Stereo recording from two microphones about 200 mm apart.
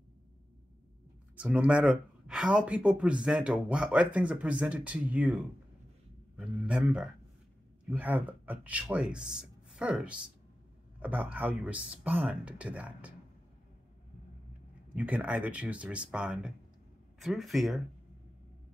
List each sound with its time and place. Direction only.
1.3 s speech: 5° right (ahead or behind)
15.0 s speech: 5° right (ahead or behind)